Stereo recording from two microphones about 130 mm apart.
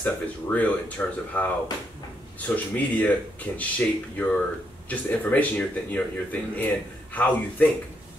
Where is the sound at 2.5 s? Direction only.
10° left (ahead or behind).